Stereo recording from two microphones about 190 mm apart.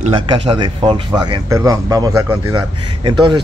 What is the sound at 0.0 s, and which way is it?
Speech, 30° right (ahead or behind).